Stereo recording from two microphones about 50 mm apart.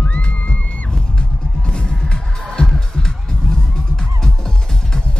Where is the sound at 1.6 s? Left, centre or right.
Centre.